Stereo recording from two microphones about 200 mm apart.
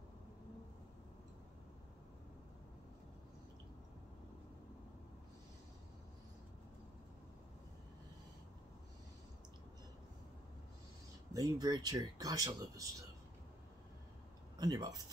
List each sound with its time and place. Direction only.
11.3 s speech: 15° right (ahead or behind)
14.6 s speech: 20° right (ahead or behind)